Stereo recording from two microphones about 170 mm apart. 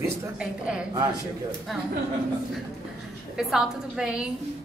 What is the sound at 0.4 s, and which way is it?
Speech, 5° right (ahead or behind).